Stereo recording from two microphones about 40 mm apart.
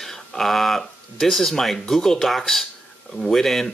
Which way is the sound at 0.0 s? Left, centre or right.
Centre.